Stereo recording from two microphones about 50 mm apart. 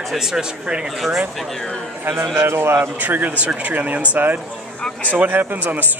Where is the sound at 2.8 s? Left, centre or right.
Right.